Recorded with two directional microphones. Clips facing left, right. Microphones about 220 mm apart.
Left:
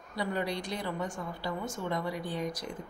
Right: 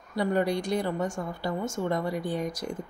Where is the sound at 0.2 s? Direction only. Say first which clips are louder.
Right 7 dB; 50° right (ahead or behind).